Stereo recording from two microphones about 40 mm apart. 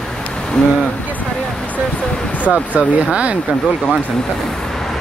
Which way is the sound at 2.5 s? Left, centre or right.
Right.